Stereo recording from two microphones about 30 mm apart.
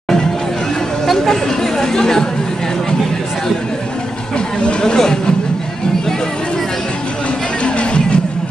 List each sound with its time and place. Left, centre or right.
1.0 s speech: centre
4.9 s speech: left
7.6 s music: left